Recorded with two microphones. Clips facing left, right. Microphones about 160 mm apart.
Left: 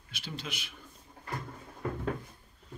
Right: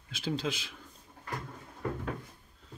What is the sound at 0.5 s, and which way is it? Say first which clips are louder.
Speech: right 7 dB; 90° right.